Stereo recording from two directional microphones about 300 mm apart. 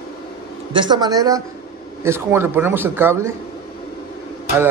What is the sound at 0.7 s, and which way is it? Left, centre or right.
Speech, centre.